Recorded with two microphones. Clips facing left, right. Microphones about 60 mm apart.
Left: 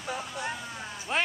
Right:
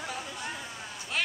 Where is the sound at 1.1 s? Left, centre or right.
Left.